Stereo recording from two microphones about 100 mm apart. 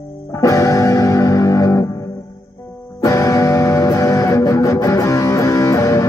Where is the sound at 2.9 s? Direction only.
35° left (ahead or behind).